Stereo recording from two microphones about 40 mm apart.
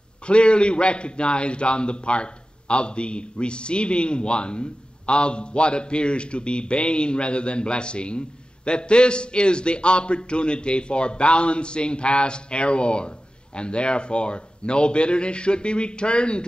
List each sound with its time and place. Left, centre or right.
0.3 s a man's voice: left